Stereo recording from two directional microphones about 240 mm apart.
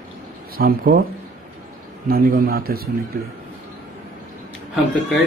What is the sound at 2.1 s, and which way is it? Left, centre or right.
Speech, right.